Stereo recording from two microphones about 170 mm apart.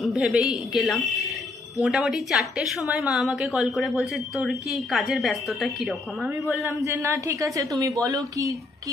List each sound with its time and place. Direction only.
0.0 s a woman's voice: 5° right (ahead or behind)
6.6 s speech: 15° right (ahead or behind)